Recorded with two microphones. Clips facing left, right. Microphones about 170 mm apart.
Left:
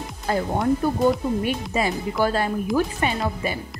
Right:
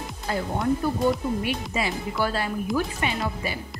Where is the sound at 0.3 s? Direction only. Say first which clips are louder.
Left 4 dB; 45° left (ahead or behind).